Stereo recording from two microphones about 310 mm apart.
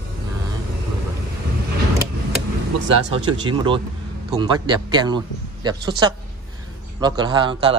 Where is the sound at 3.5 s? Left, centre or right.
Centre.